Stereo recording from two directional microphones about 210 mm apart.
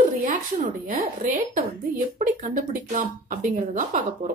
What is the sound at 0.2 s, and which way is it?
A woman's voice, 35° right (ahead or behind).